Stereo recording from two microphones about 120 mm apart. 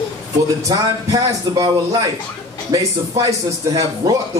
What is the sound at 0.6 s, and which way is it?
A man's voice, 30° right (ahead or behind).